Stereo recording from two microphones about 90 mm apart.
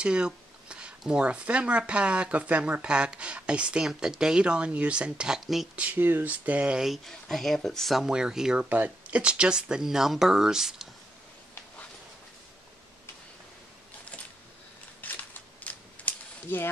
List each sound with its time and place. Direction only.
0.0 s speech: 10° right (ahead or behind)
5.8 s speech: 20° right (ahead or behind)
8.6 s speech: 20° right (ahead or behind)
15.0 s a sound: 20° left (ahead or behind)